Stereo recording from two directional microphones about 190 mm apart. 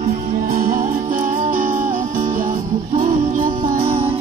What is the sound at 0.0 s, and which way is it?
Music, 35° right (ahead or behind).